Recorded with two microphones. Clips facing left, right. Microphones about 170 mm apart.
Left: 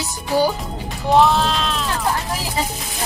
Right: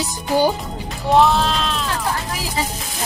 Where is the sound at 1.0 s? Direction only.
Centre (ahead or behind).